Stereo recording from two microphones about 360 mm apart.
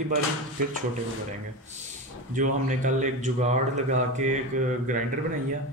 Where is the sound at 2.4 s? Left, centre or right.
Centre.